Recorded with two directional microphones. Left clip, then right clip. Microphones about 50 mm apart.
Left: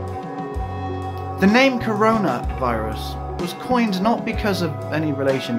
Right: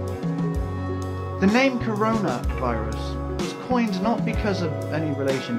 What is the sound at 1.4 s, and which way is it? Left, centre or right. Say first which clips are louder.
Speech: left 4 dB; left.